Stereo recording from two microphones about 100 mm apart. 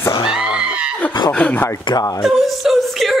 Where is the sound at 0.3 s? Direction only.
10° right (ahead or behind).